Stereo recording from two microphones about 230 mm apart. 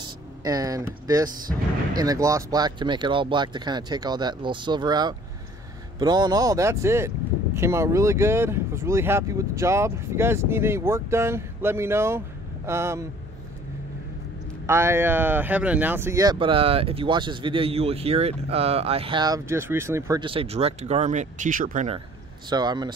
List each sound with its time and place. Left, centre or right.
0.0 s speech: centre
14.7 s speech: centre; by 22.0 s right
22.5 s speech: centre